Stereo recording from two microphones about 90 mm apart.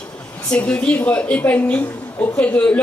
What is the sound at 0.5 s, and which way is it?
A woman's voice, 15° left (ahead or behind).